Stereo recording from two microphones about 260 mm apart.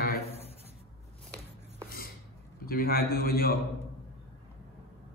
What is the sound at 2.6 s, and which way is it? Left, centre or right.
Speech, left.